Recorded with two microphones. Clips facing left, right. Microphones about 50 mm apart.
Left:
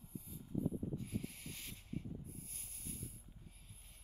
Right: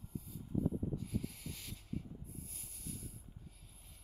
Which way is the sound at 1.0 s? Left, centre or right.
Left.